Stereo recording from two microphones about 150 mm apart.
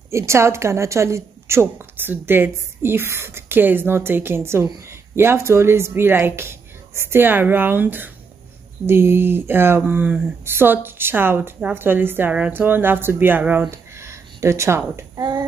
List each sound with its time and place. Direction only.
0.1 s speech: 20° right (ahead or behind)